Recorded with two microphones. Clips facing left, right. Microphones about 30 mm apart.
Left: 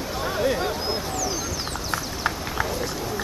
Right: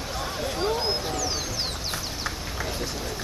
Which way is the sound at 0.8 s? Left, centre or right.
Right.